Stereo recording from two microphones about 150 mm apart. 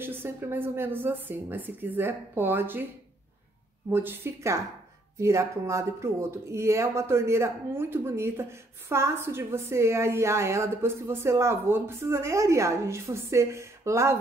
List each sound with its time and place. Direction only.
0.0 s speech: 15° right (ahead or behind)
3.9 s speech: 15° right (ahead or behind)